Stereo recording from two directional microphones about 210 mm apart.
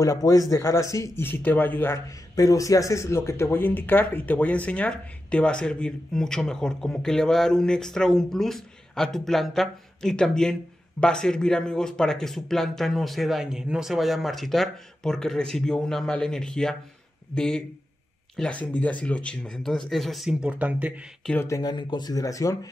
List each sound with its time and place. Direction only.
0.0 s speech: 15° left (ahead or behind); by 21.3 s 5° right (ahead or behind)
21.3 s speech: 10° left (ahead or behind)